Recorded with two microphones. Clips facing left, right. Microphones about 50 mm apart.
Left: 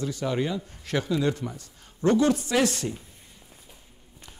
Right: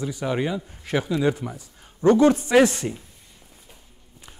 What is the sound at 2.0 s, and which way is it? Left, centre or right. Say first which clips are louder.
Speech: right 5 dB; right.